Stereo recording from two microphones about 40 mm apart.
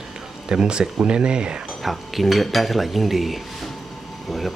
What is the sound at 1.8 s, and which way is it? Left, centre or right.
Speech, centre.